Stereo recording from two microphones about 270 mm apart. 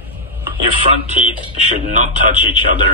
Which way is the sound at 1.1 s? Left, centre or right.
Left.